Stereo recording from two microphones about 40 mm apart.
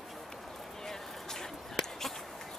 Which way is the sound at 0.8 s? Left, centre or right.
Centre.